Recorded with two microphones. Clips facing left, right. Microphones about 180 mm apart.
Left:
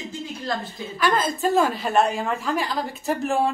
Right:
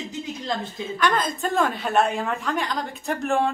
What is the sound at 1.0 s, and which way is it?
A woman's voice, 5° left (ahead or behind).